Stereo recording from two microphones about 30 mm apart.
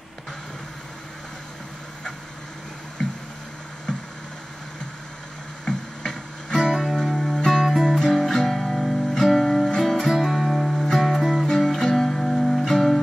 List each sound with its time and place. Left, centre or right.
5.7 s music: centre
6.7 s music: centre
7.0 s music: centre